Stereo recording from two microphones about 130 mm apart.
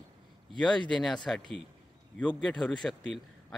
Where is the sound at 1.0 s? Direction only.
5° left (ahead or behind).